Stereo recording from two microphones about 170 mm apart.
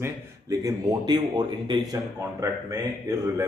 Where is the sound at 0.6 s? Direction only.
20° right (ahead or behind).